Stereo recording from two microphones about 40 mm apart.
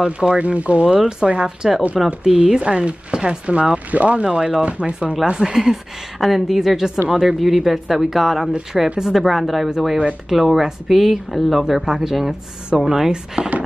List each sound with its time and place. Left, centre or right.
0.0 s speech: right
0.4 s speech: right
1.0 s speech: centre
5.2 s speech: centre
13.4 s speech: right